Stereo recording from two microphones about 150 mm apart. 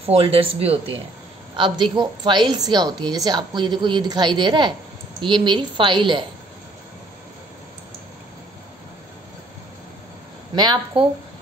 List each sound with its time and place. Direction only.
0.0 s a woman's voice: 40° right (ahead or behind)
1.5 s a woman's voice: 30° right (ahead or behind)
10.5 s speech: 30° right (ahead or behind)